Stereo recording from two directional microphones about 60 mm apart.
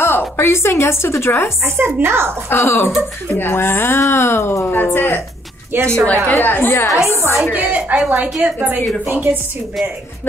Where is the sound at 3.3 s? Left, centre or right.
Left.